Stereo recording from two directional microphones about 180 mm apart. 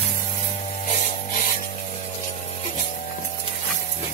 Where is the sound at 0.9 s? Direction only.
40° left (ahead or behind).